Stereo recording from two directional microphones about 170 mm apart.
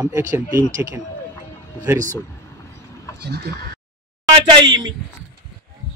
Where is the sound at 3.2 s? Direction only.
70° right (ahead or behind).